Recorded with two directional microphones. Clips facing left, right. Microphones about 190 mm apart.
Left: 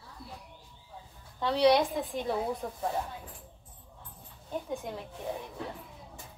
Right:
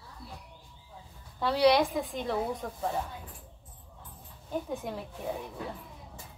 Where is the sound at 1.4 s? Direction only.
5° right (ahead or behind).